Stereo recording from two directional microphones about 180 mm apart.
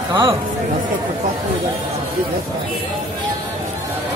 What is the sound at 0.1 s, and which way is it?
Speech, 15° right (ahead or behind).